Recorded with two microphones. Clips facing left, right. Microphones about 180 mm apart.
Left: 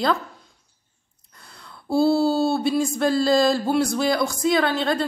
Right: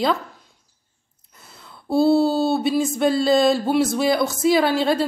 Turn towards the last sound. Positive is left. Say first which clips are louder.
# right 3 dB
turn(degrees=-5)  # may be behind; listen again after turning